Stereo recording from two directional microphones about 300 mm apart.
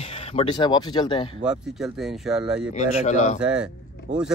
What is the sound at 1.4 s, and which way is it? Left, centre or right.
Speech, centre.